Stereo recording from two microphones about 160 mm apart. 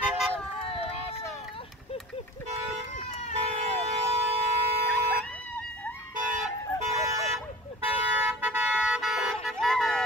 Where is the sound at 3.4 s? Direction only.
40° right (ahead or behind).